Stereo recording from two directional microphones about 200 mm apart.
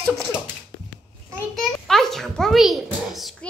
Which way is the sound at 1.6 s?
Centre (ahead or behind).